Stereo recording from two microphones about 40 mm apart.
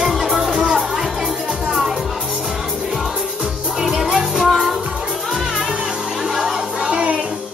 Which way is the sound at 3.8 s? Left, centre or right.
Centre.